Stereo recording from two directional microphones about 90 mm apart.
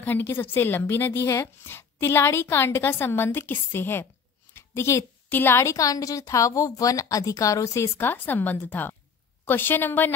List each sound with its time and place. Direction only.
0.0 s a woman's voice: 20° left (ahead or behind)
4.6 s a sound: 30° left (ahead or behind)
5.3 s a woman's voice: 25° left (ahead or behind)